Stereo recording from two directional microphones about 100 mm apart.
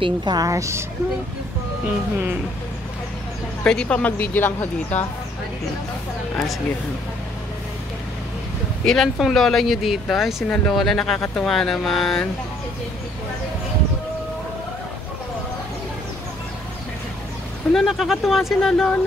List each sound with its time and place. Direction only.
0.0 s a woman's voice: 45° right (ahead or behind); by 0.8 s 30° right (ahead or behind)
3.6 s speech: 10° left (ahead or behind)
8.8 s speech: 5° left (ahead or behind)
17.7 s speech: centre (ahead or behind)